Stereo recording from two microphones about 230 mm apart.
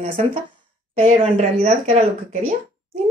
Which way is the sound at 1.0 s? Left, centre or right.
Right.